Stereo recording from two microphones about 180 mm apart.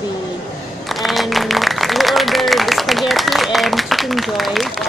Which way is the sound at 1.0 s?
Centre (ahead or behind).